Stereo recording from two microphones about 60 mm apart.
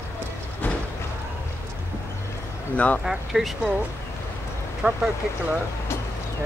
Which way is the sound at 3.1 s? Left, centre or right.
Centre.